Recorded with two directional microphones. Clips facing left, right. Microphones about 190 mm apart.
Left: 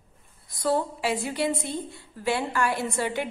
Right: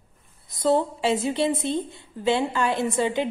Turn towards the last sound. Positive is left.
turn(degrees=-20)  # may be behind; listen again after turning